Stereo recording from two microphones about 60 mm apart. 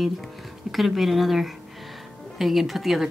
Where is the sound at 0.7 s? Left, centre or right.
Centre.